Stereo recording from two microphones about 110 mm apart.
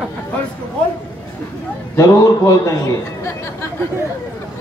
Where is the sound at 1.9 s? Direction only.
30° left (ahead or behind).